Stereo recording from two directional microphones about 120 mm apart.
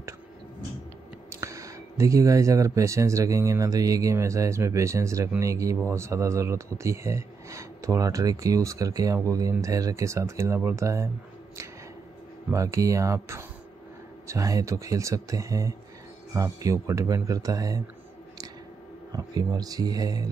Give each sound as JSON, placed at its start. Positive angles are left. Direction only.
{"t": 1.3, "sound": "speech", "side_deg": -25}
{"t": 12.4, "sound": "speech", "side_deg": -25}
{"t": 19.1, "sound": "speech", "side_deg": -35}